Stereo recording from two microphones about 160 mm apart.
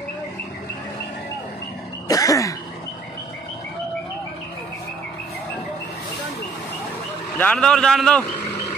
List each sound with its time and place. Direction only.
2.0 s throat clearing: 20° left (ahead or behind)
7.3 s a man's voice: 5° left (ahead or behind)